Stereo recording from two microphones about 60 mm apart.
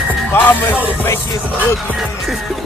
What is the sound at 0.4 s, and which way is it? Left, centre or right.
Music, left.